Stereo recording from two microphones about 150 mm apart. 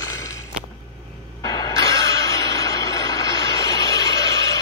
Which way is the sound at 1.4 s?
25° left (ahead or behind).